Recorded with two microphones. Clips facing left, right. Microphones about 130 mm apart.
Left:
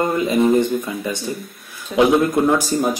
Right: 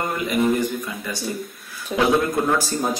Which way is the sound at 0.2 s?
25° left (ahead or behind).